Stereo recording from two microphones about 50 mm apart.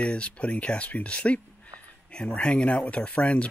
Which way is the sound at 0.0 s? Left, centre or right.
Left.